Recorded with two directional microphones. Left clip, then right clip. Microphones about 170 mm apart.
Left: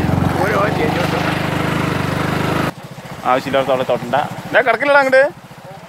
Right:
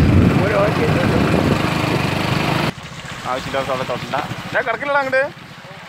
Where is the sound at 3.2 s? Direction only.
65° left (ahead or behind).